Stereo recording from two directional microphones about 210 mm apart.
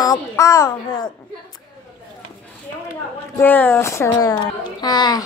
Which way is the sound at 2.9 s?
10° left (ahead or behind).